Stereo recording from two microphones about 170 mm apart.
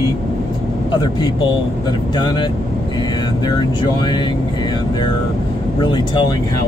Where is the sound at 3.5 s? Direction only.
25° left (ahead or behind).